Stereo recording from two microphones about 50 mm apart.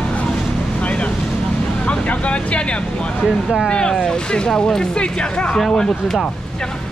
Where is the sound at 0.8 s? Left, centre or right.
Left.